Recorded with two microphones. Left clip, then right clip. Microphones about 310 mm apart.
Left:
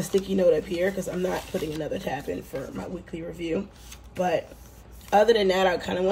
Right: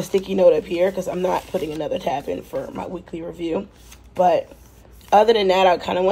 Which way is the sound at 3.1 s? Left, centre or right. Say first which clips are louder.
Right 4 dB; right.